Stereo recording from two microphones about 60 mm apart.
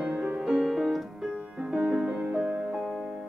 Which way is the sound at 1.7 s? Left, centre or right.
Centre.